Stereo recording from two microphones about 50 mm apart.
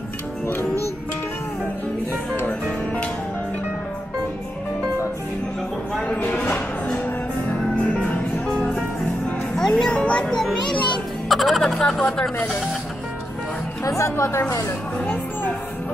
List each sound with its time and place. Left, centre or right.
2.4 s music: left
6.2 s a sound: left
7.8 s music: left
9.6 s music: centre
11.2 s music: centre
13.8 s speech: left